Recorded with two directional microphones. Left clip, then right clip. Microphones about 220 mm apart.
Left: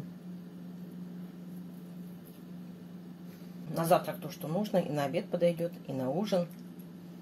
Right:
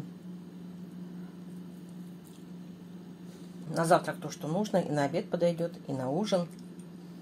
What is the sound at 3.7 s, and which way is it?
A woman's voice, 20° right (ahead or behind).